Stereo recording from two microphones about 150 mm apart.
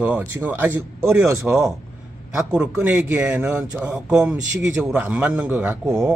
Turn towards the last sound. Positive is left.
turn(degrees=-10)  # may be behind; listen again after turning